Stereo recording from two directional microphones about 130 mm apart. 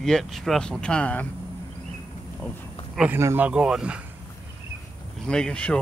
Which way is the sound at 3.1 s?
20° right (ahead or behind).